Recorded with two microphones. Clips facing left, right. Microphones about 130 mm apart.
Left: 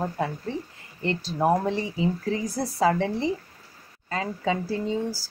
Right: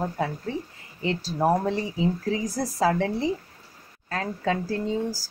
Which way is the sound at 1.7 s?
5° right (ahead or behind).